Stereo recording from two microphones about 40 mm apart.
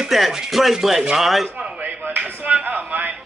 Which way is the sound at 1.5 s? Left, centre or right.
Right.